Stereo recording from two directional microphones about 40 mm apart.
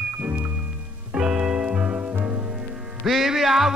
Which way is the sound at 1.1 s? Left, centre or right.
Centre.